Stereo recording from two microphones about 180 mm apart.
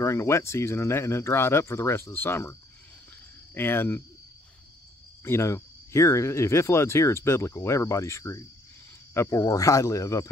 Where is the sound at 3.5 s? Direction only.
10° left (ahead or behind).